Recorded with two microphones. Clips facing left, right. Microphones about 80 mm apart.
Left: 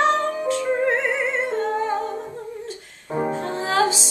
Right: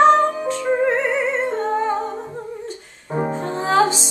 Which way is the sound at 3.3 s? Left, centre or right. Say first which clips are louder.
Right 7 dB; centre.